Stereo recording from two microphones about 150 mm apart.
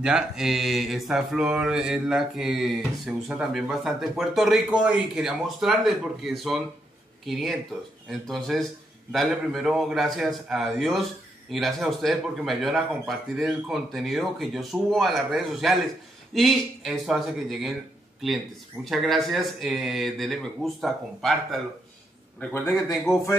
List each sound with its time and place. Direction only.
0.0 s speech: 5° right (ahead or behind)
18.9 s speech: centre (ahead or behind)